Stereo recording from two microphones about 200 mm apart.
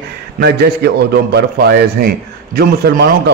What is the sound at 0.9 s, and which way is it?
A man's voice, 55° right (ahead or behind).